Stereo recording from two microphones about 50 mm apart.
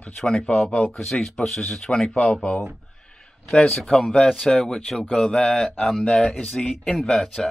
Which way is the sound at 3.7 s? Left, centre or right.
Centre.